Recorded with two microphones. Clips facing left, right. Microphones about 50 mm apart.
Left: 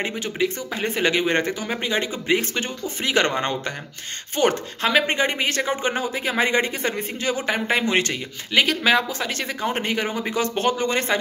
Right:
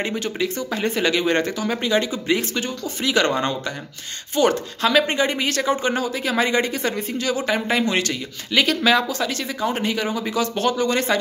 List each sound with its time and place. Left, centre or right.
0.1 s speech: centre
9.3 s speech: left